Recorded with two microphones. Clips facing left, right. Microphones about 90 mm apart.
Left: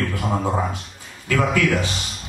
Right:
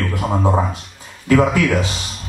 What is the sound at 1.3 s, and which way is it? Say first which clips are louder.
Speech: right 5 dB; 20° right (ahead or behind).